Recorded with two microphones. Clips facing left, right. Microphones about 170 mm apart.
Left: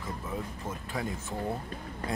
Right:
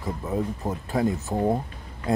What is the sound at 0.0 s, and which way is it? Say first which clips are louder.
Speech: right 9 dB; 40° right (ahead or behind).